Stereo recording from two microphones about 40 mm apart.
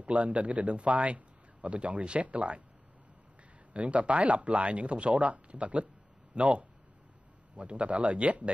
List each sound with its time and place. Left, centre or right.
0.0 s a man's voice: right
3.7 s a man's voice: right